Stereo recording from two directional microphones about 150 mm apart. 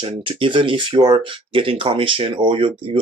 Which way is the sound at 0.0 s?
35° right (ahead or behind).